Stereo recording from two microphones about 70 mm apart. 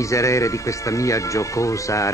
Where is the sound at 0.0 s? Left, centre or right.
Left.